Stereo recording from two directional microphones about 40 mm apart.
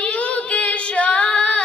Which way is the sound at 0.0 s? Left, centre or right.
Left.